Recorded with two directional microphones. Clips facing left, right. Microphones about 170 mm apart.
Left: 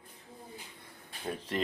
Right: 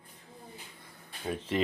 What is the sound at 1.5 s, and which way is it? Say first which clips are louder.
Speech: right 4 dB; centre (ahead or behind).